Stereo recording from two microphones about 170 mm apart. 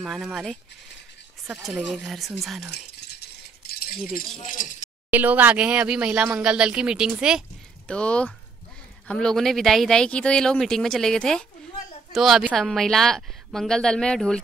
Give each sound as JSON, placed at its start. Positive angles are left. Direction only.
{"t": 0.0, "sound": "speech", "side_deg": 0}
{"t": 2.7, "sound": "rattle", "side_deg": 80}
{"t": 4.5, "sound": "chink", "side_deg": 50}
{"t": 5.1, "sound": "speech", "side_deg": -10}
{"t": 7.9, "sound": "speech", "side_deg": 5}